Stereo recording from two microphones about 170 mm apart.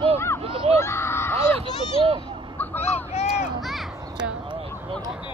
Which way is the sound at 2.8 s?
40° left (ahead or behind).